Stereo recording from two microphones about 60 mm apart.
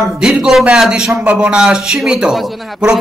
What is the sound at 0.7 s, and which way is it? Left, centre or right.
Speech, centre.